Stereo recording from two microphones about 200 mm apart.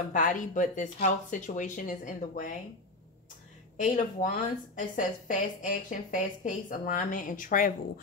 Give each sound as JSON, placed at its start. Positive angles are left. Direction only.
{"t": 0.1, "sound": "speech", "side_deg": 40}
{"t": 3.8, "sound": "speech", "side_deg": 40}